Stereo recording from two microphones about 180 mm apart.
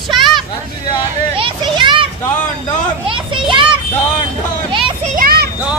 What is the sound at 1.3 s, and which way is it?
Children playing, 25° right (ahead or behind).